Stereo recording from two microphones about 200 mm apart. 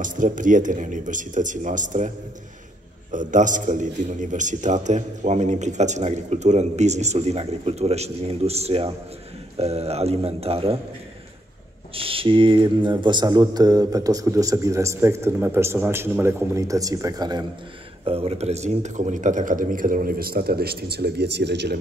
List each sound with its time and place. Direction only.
0.0 s a man's voice: 40° right (ahead or behind)
3.1 s a man's voice: 40° right (ahead or behind)
11.9 s a man's voice: 25° right (ahead or behind); by 21.7 s 55° right (ahead or behind)